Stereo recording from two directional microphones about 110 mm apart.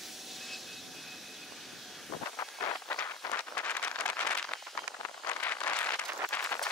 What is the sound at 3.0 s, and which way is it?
Vehicle, 25° left (ahead or behind).